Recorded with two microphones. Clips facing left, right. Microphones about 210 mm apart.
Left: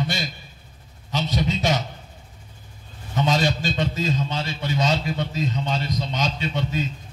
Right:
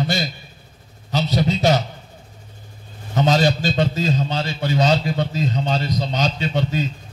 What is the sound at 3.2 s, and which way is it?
A man's voice, 35° right (ahead or behind).